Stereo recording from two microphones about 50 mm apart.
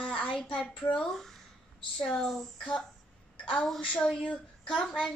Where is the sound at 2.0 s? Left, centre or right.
Centre.